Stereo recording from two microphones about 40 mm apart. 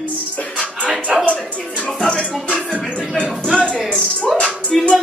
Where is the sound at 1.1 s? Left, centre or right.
Right.